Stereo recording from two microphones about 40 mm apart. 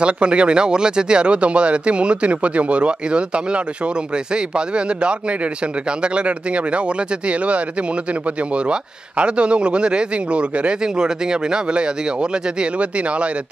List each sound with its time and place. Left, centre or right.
0.0 s speech: right